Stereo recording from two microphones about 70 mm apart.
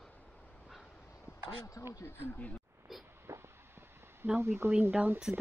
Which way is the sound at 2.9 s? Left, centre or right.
Centre.